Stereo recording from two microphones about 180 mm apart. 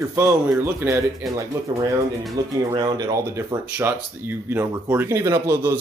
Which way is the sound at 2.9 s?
20° right (ahead or behind).